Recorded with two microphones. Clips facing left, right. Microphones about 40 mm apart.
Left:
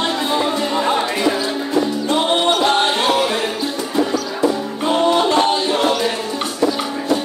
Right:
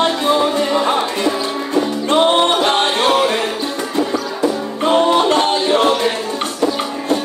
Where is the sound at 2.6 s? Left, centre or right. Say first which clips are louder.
Right 1 dB; right.